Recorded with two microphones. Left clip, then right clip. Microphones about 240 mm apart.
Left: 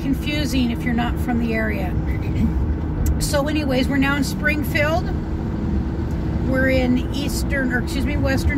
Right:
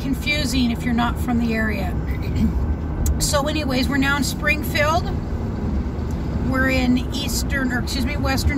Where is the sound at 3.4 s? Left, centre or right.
Right.